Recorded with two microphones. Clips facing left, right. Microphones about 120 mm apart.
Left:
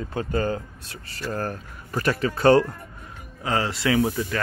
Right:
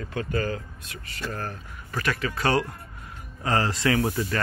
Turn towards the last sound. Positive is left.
turn(degrees=5)  # may be behind; listen again after turning